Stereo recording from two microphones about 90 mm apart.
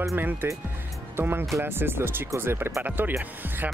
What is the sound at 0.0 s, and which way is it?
Speech, 25° right (ahead or behind).